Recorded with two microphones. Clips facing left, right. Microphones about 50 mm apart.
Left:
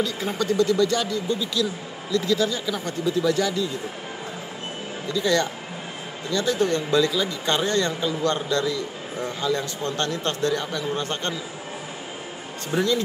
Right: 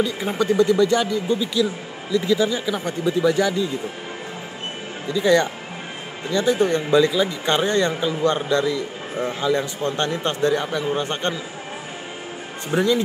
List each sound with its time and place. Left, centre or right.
0.0 s speech: centre
5.0 s speech: centre
12.7 s speech: centre